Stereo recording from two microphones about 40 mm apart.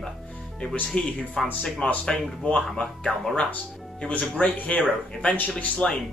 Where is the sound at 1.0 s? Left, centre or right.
Left.